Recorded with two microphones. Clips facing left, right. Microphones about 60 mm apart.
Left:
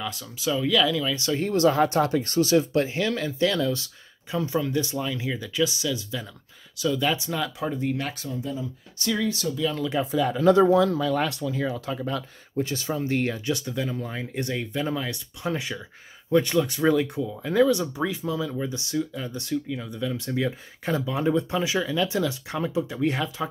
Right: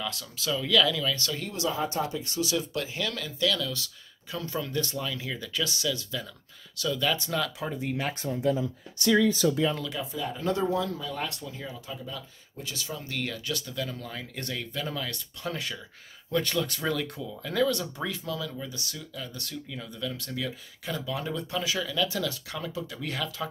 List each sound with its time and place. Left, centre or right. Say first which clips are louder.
0.0 s speech: left 4 dB; centre
1.3 s speech: left 10 dB; left
1.8 s speech: left 8 dB; left; by 8.1 s centre
8.1 s speech: right 2 dB; right
8.4 s speech: right 7 dB; right
9.6 s speech: even; right
10.1 s speech: left 12 dB; left
12.6 s speech: left 9 dB; left
19.5 s speech: left 9 dB; centre